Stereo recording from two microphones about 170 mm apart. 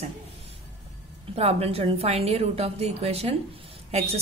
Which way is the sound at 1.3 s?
35° right (ahead or behind).